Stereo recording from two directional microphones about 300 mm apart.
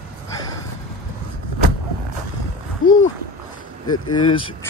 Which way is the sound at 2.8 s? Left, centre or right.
Left.